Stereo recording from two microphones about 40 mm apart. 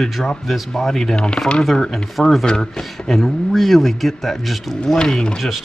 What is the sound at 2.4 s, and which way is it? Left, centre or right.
Speech, centre.